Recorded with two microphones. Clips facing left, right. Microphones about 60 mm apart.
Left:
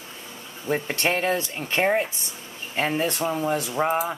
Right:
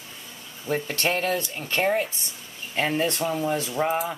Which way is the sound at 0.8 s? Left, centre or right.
Left.